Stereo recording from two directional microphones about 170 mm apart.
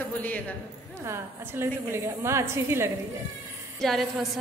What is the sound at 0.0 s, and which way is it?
Speech, 10° left (ahead or behind).